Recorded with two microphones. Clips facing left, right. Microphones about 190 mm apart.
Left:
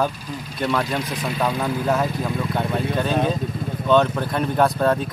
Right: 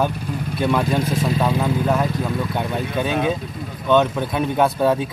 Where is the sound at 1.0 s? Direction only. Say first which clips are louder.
Right 5 dB; 30° right (ahead or behind).